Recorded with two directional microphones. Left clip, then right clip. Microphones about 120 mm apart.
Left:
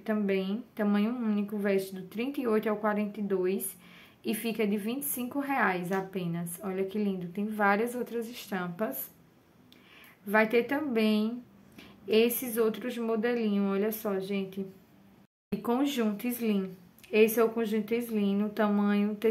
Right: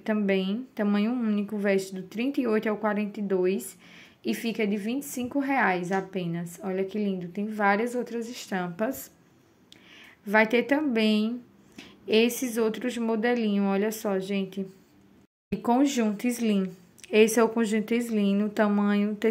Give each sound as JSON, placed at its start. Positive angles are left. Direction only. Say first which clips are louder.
{"t": 0.0, "sound": "a woman's voice", "louder": "right 4 dB", "side_deg": -40}
{"t": 15.6, "sound": "a woman's voice", "louder": "right 5 dB", "side_deg": -35}